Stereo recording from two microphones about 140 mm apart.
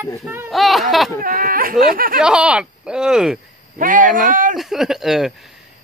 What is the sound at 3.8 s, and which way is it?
Speech, 70° right (ahead or behind).